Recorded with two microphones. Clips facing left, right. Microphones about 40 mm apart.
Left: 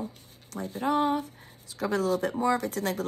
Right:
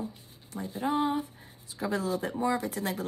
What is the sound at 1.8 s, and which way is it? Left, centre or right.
Speech, left.